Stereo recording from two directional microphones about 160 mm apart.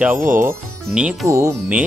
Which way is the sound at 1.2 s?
20° right (ahead or behind).